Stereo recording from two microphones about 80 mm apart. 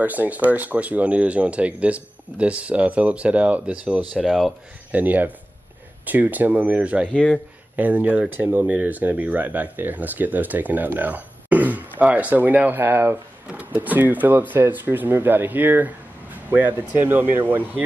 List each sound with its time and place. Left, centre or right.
0.0 s speech: right
4.3 s speech: centre
4.9 s speech: right
7.1 s speech: centre
7.7 s speech: centre
13.5 s speech: centre